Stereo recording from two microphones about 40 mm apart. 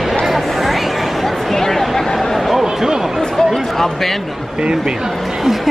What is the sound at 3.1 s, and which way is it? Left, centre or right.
Chatter, centre.